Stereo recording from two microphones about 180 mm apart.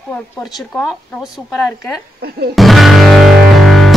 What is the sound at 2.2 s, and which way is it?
Speech, 60° right (ahead or behind).